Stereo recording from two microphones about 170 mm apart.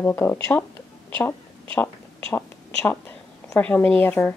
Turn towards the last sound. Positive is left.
turn(degrees=10)  # may be behind; listen again after turning